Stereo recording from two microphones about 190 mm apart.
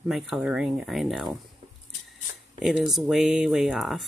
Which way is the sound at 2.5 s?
Centre (ahead or behind).